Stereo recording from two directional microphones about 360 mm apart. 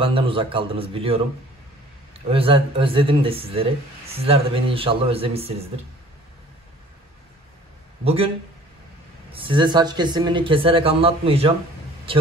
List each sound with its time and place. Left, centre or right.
0.0 s speech: centre
8.0 s speech: centre
9.3 s a man's voice: centre